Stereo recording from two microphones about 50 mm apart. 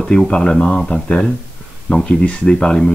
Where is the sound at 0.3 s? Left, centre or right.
Left.